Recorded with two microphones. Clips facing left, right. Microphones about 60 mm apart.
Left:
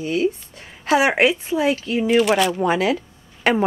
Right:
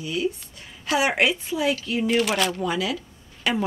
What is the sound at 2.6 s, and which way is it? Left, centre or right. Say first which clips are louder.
Speech: left 7 dB; left.